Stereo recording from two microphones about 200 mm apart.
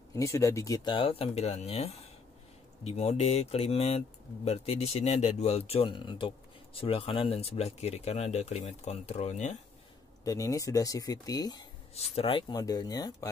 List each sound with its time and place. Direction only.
0.1 s speech: 15° left (ahead or behind); by 9.6 s 35° left (ahead or behind)
10.2 s speech: 15° left (ahead or behind)
11.9 s speech: 30° left (ahead or behind)